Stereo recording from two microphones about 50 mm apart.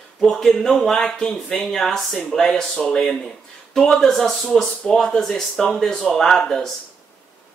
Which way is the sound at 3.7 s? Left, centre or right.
Centre.